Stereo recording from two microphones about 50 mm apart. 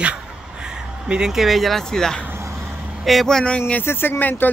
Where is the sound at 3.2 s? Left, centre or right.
Centre.